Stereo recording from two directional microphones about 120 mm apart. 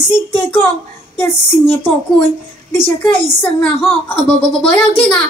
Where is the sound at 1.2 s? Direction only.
15° left (ahead or behind).